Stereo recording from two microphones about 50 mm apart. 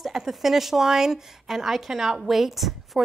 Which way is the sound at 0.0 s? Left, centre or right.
Centre.